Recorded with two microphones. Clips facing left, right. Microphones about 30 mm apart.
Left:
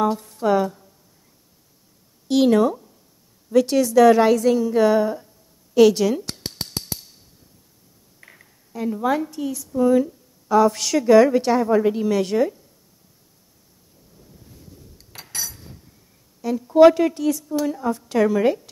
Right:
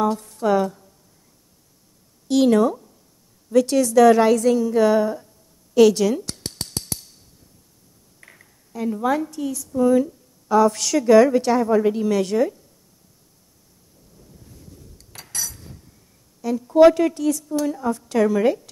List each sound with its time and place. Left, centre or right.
0.0 s speech: centre
2.2 s a woman's voice: centre
5.8 s cutlery: centre
8.2 s a woman's voice: centre
14.2 s a sound: centre
16.3 s a woman's voice: centre